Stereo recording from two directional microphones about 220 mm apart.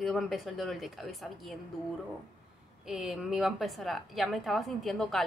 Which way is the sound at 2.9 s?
Centre (ahead or behind).